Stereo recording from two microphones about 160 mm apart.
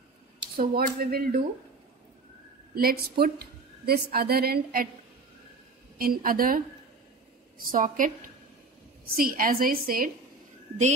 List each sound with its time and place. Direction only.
0.6 s a woman's voice: 65° right (ahead or behind)
2.7 s a woman's voice: 70° right (ahead or behind)
5.9 s a woman's voice: 65° right (ahead or behind)
9.1 s a woman's voice: 60° right (ahead or behind)